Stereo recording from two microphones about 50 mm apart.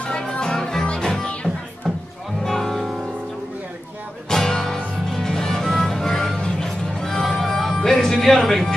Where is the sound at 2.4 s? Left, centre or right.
Centre.